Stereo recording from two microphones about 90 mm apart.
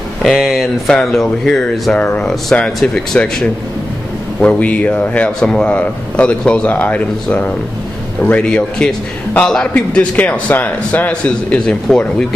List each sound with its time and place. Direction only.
0.2 s speech: centre (ahead or behind)
2.0 s a man's voice: 15° left (ahead or behind)